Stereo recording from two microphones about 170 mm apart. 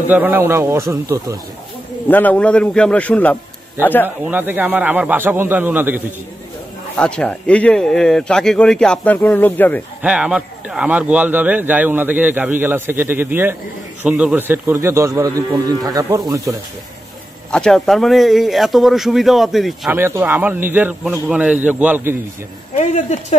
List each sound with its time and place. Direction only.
0.1 s a man's voice: 10° right (ahead or behind)
2.0 s a man's voice: 10° left (ahead or behind)
4.3 s a man's voice: 10° right (ahead or behind)
7.0 s speech: 5° left (ahead or behind)
10.0 s a man's voice: 5° right (ahead or behind)
17.5 s speech: 5° left (ahead or behind)
19.9 s a man's voice: 10° right (ahead or behind)